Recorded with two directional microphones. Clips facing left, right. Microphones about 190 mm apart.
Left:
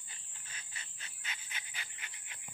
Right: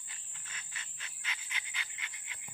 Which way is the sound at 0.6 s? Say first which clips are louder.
Right 1 dB; 35° left (ahead or behind).